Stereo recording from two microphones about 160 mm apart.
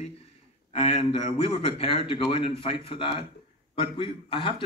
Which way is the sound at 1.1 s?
35° left (ahead or behind).